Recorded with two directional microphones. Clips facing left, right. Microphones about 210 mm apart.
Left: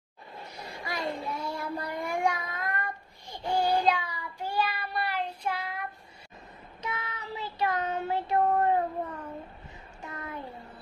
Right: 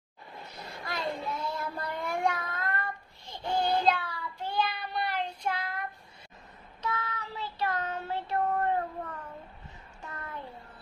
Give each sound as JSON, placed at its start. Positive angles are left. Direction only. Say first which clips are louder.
{"t": 0.6, "sound": "child singing", "louder": "left 1 dB", "side_deg": 10}
{"t": 6.8, "sound": "child singing", "louder": "right 2 dB", "side_deg": 15}
{"t": 10.0, "sound": "a sound", "louder": "left 3 dB", "side_deg": 15}